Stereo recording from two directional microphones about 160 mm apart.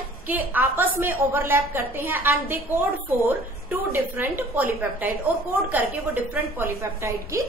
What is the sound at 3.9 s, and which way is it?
A woman's voice, 10° right (ahead or behind).